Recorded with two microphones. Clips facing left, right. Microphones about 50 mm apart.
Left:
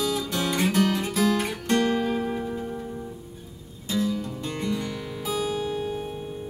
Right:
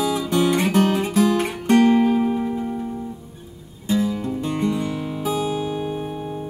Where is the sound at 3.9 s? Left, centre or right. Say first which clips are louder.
Right 5 dB; right.